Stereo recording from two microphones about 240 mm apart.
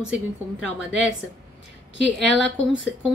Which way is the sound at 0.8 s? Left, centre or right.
Left.